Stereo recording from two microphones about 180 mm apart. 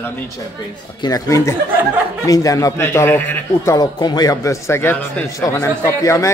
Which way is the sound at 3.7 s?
20° left (ahead or behind).